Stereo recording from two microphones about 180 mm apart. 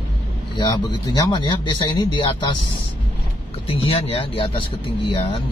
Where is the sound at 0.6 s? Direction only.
25° left (ahead or behind).